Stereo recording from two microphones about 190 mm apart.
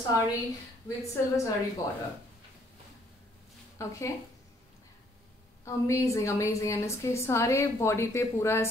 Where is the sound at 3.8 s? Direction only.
15° left (ahead or behind).